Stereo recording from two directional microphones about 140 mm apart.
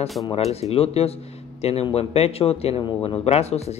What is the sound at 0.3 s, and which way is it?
Speech, 45° left (ahead or behind).